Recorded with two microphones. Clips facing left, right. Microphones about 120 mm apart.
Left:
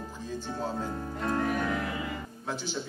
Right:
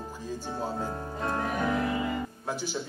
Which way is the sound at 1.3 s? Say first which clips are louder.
Right 1 dB; 15° right (ahead or behind).